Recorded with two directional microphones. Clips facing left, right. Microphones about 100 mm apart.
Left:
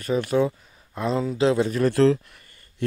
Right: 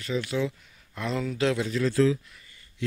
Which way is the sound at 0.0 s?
45° left (ahead or behind).